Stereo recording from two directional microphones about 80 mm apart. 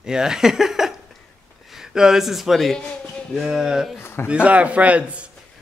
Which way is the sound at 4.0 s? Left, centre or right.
Left.